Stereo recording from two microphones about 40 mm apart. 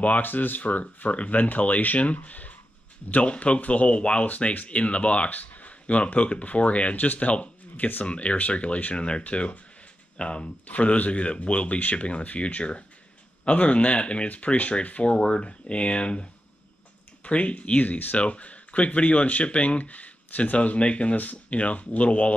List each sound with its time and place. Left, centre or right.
0.2 s speech: left
15.1 s speech: left
18.1 s speech: left